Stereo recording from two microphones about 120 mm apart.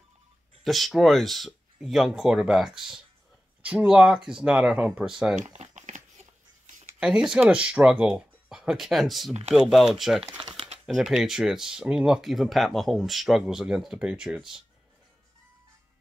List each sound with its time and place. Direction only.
0.7 s speech: centre (ahead or behind)
5.4 s crumpling: 80° right
7.0 s speech: 5° right (ahead or behind)
10.4 s a sound: 50° right (ahead or behind)
10.9 s speech: centre (ahead or behind)